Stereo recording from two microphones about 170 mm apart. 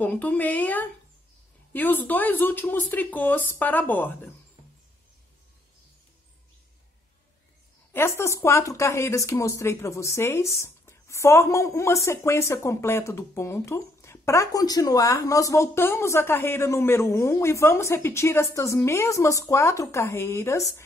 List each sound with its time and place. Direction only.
0.0 s a woman's voice: 10° left (ahead or behind)
7.9 s a woman's voice: 15° left (ahead or behind)